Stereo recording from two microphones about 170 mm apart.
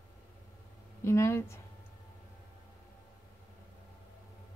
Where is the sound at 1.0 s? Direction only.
15° left (ahead or behind).